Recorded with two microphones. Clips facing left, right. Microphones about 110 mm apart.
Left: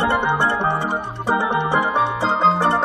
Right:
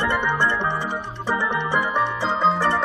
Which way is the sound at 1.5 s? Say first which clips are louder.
Left 4 dB; 55° left (ahead or behind).